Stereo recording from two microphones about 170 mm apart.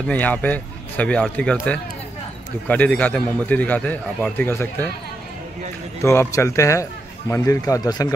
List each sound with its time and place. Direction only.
0.1 s a man's voice: 10° left (ahead or behind)
6.0 s a man's voice: 15° left (ahead or behind)